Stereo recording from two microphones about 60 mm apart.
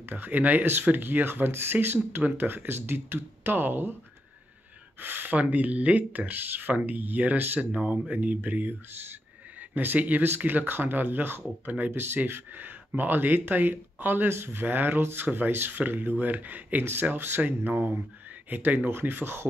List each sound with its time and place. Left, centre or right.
0.1 s speech: right
5.0 s speech: right
12.0 s speech: right